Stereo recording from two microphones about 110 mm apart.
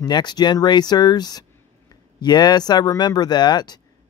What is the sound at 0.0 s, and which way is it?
Speech, 40° left (ahead or behind).